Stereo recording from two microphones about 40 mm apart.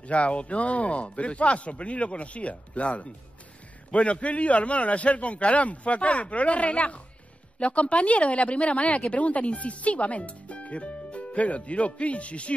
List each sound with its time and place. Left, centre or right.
0.0 s speech: left